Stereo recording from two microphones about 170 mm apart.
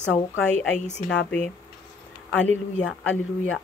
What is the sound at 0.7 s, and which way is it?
Speech, 45° left (ahead or behind).